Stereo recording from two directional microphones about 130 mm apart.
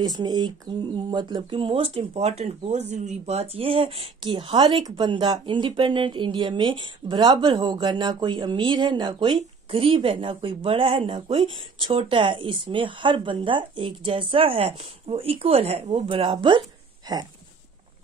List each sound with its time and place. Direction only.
0.0 s speech: 35° right (ahead or behind)